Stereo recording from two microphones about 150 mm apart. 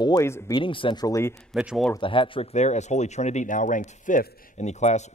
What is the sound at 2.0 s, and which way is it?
Speech, 35° left (ahead or behind).